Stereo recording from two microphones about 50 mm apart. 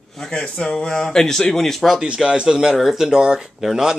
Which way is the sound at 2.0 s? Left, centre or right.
Centre.